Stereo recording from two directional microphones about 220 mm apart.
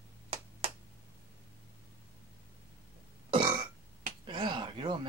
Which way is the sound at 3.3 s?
25° right (ahead or behind).